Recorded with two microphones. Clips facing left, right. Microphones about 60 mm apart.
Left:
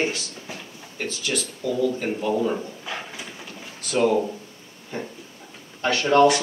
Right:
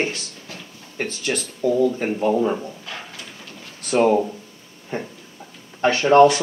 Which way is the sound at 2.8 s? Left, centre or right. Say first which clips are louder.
Left 2 dB; centre.